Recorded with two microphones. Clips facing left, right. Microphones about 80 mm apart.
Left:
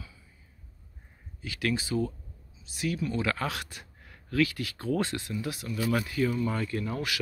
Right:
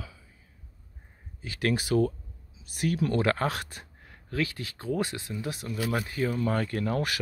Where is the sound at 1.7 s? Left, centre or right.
Right.